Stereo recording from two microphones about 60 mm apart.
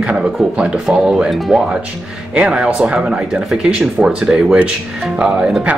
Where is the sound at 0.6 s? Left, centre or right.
Centre.